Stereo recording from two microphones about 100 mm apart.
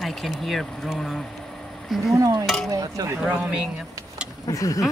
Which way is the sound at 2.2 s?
35° right (ahead or behind).